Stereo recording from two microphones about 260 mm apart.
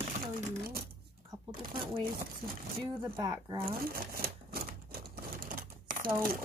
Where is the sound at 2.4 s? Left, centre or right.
Centre.